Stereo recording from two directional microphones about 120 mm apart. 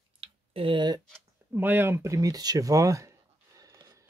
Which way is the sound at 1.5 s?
15° right (ahead or behind).